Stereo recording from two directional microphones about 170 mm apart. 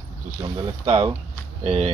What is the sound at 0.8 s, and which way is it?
Speech, 40° right (ahead or behind).